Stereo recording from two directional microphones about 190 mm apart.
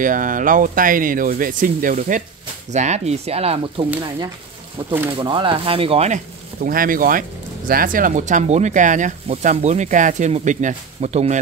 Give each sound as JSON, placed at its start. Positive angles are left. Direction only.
{"t": 0.0, "sound": "speech", "side_deg": -45}
{"t": 5.1, "sound": "speech", "side_deg": -25}